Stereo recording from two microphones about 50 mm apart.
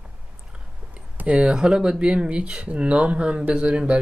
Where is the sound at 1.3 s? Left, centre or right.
Centre.